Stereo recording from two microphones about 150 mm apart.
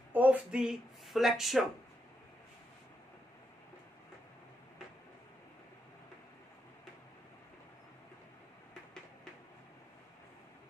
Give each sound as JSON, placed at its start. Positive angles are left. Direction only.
{"t": 0.1, "sound": "speech", "side_deg": -10}